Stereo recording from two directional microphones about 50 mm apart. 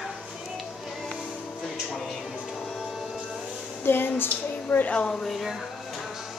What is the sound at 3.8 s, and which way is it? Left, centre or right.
Speech, left.